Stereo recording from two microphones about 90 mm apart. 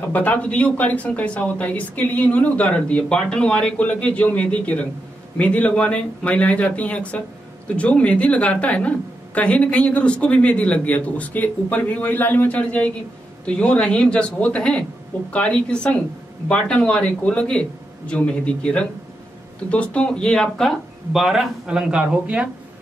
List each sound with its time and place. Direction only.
0.1 s a woman's voice: 15° left (ahead or behind); by 22.5 s 10° right (ahead or behind)